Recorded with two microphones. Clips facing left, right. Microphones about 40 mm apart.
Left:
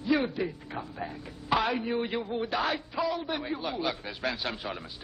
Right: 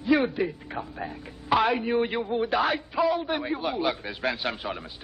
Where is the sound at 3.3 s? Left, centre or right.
Right.